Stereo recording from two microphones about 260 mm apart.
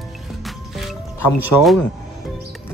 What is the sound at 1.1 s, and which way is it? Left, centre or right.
Speech, left.